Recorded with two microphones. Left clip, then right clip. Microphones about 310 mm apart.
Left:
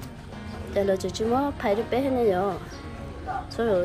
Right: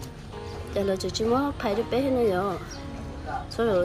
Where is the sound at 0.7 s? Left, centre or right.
Centre.